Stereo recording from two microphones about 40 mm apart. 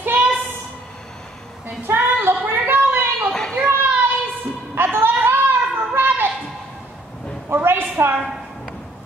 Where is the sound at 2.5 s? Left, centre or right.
Right.